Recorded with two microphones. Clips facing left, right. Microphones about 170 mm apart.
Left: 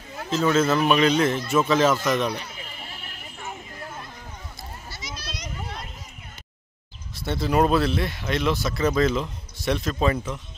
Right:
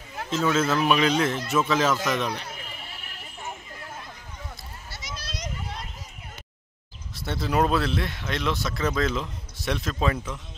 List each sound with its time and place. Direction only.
0.3 s speech: centre (ahead or behind)
5.0 s a sound: 50° right (ahead or behind)
7.2 s speech: centre (ahead or behind)